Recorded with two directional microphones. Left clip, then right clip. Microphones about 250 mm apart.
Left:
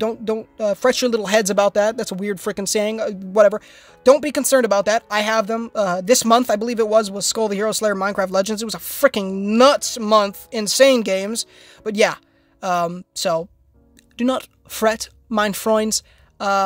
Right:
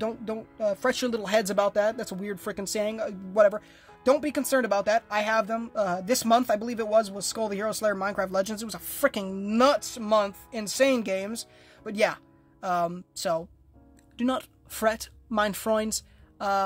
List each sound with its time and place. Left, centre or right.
0.0 s a woman's voice: left